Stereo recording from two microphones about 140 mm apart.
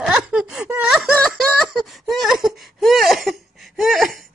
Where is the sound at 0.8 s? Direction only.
5° right (ahead or behind).